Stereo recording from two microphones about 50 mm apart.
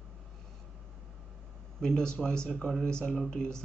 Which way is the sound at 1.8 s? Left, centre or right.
Centre.